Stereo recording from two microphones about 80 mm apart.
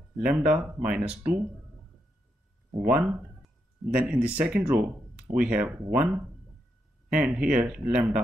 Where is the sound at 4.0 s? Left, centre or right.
Centre.